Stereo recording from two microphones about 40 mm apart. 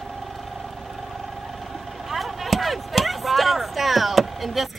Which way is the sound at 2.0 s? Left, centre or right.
Centre.